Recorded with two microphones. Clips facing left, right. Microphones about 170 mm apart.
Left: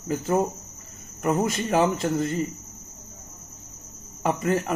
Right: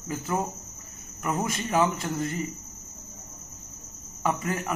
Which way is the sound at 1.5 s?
25° left (ahead or behind).